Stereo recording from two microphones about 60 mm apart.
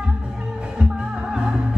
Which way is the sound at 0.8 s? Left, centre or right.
Centre.